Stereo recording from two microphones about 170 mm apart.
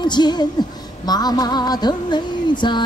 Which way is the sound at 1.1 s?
20° left (ahead or behind).